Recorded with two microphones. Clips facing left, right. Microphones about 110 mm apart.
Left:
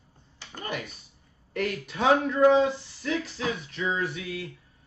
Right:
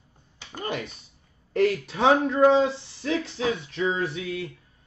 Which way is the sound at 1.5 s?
30° right (ahead or behind).